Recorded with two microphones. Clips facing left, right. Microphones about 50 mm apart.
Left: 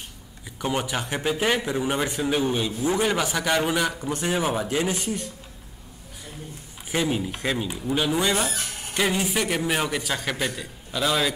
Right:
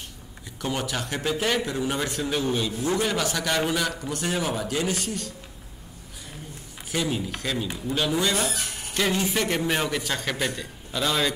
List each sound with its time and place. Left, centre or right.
0.6 s a man's voice: centre
6.9 s speech: centre